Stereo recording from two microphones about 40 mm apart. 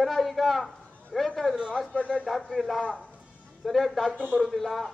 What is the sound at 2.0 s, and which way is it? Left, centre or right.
Speech, left.